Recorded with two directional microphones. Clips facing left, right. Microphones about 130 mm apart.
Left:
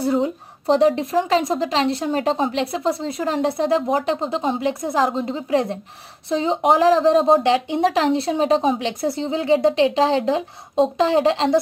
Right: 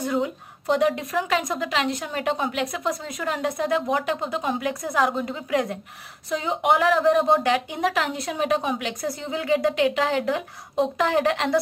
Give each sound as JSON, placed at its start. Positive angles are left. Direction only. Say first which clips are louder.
{"t": 0.0, "sound": "a woman's voice", "louder": "left 5 dB", "side_deg": 30}